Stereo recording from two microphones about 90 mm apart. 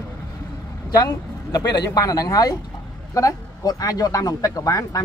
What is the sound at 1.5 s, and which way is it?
Speech, 50° left (ahead or behind).